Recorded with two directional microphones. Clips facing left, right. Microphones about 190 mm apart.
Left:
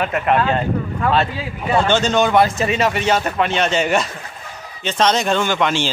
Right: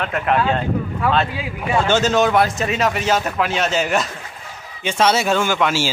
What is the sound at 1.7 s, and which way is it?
A man's voice, 5° right (ahead or behind).